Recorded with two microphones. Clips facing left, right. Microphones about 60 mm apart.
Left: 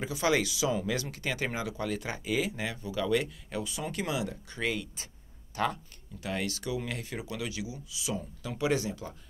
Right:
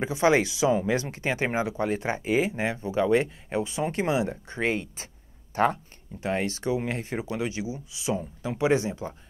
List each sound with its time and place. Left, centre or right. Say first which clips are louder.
0.0 s speech: right 6 dB; right